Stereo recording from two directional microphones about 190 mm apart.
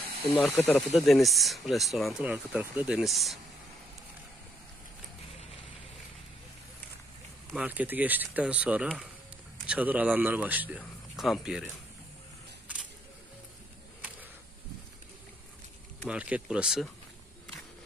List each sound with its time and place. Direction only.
0.3 s speech: centre (ahead or behind)
7.5 s speech: 10° right (ahead or behind)
16.1 s speech: 5° right (ahead or behind)